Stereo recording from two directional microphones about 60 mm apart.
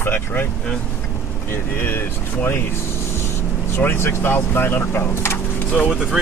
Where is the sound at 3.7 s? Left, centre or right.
Left.